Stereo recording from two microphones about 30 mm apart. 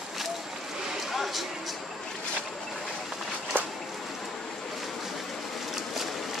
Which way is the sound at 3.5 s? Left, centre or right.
Right.